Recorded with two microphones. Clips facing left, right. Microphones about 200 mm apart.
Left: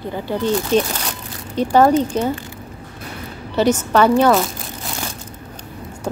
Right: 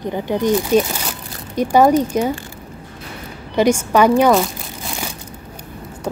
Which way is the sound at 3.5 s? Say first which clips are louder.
Right 1 dB; 10° right (ahead or behind).